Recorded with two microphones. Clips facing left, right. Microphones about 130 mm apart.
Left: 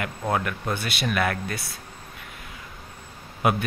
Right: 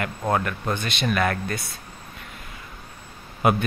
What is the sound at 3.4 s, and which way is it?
Speech, centre (ahead or behind).